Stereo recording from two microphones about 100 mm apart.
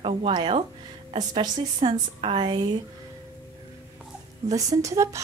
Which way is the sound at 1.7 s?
65° right (ahead or behind).